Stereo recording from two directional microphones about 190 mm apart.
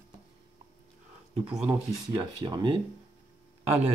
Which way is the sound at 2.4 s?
25° right (ahead or behind).